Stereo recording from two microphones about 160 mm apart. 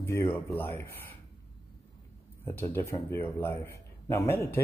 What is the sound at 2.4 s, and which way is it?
Speech, 15° left (ahead or behind).